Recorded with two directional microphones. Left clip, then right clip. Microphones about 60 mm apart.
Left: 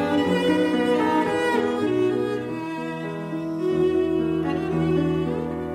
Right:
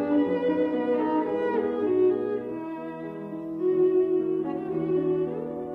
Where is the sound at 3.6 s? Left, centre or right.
Left.